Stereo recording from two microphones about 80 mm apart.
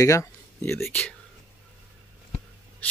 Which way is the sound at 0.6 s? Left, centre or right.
Left.